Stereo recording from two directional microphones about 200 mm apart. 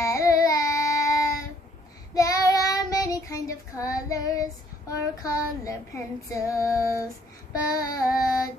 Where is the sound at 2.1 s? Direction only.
15° left (ahead or behind).